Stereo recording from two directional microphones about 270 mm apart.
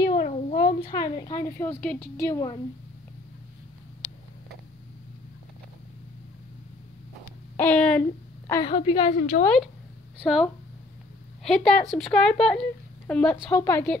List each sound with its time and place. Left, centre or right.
0.1 s speech: left
7.5 s speech: centre
8.5 s a woman's voice: centre
9.4 s a woman's voice: centre